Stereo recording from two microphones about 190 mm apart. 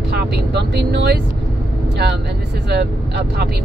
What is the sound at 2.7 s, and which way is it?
Speech, 60° right (ahead or behind).